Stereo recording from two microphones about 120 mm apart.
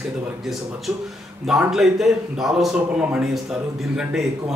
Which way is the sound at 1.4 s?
5° right (ahead or behind).